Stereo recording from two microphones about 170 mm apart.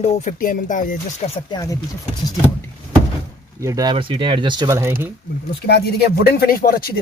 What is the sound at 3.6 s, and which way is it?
Speech, 20° right (ahead or behind).